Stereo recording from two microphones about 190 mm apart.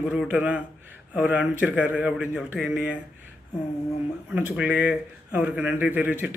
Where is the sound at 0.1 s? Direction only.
5° right (ahead or behind).